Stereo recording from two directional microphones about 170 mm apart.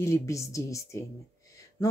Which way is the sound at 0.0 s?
15° left (ahead or behind).